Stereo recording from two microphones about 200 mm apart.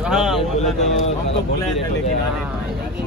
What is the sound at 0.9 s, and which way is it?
Speech, 35° left (ahead or behind).